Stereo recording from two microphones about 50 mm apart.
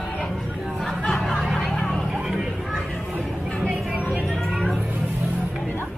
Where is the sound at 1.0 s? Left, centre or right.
Centre.